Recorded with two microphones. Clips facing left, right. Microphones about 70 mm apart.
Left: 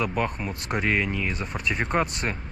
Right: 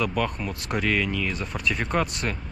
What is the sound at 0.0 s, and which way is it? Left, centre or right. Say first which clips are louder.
Speech: right 1 dB; left.